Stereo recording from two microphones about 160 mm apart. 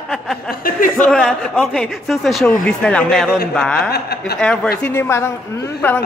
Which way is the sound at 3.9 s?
80° left.